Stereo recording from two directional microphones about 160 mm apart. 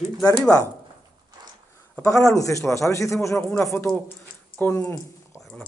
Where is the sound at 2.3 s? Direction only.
20° left (ahead or behind).